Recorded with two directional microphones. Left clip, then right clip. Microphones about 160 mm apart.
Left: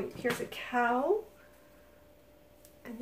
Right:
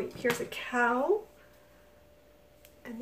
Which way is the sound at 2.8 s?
10° right (ahead or behind).